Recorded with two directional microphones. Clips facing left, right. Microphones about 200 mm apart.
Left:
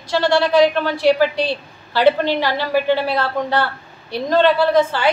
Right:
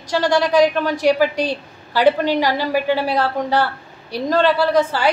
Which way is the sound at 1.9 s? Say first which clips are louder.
Even; 10° right (ahead or behind).